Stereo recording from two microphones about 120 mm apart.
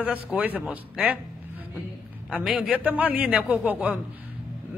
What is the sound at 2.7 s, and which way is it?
A man's voice, 15° right (ahead or behind).